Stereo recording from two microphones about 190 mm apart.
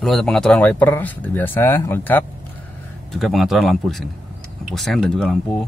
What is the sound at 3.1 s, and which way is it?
Speech, centre (ahead or behind).